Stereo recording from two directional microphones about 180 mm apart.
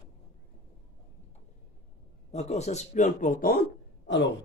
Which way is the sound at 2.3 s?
40° left (ahead or behind).